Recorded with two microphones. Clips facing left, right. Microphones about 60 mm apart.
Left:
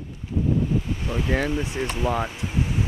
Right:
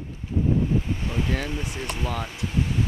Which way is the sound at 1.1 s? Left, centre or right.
Centre.